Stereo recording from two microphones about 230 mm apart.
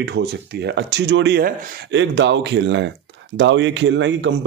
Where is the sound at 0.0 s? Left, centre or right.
Right.